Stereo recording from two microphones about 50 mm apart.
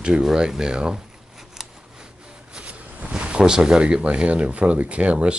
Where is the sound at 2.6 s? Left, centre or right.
Right.